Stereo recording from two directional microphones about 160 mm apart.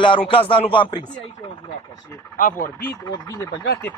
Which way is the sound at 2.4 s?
60° left (ahead or behind).